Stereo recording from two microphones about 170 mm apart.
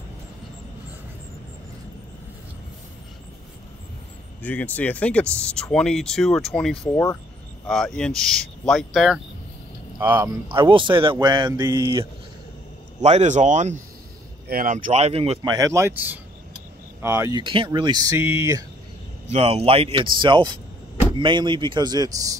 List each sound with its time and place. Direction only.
4.4 s speech: 10° left (ahead or behind); by 10.3 s 10° right (ahead or behind)
10.5 s speech: 30° right (ahead or behind)
13.0 s speech: 40° right (ahead or behind)
15.4 s speech: 20° right (ahead or behind)
17.4 s speech: 30° right (ahead or behind)
19.3 s speech: 35° right (ahead or behind); by 22.4 s 20° right (ahead or behind)